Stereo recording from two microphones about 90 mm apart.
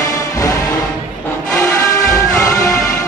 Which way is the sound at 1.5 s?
35° left (ahead or behind).